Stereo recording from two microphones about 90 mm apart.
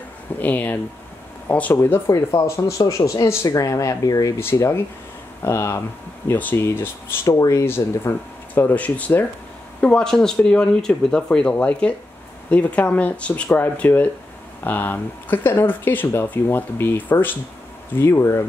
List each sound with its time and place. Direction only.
0.4 s speech: 20° left (ahead or behind)
1.8 s speech: 30° left (ahead or behind)
4.4 s speech: 30° left (ahead or behind)
7.2 s speech: 40° left (ahead or behind)